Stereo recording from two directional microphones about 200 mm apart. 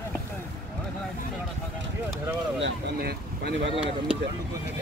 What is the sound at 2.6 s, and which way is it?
Speech, 55° right (ahead or behind).